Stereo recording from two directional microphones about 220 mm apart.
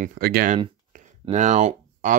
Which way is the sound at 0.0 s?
45° right (ahead or behind).